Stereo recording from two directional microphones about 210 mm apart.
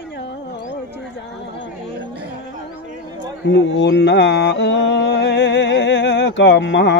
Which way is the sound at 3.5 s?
55° left (ahead or behind).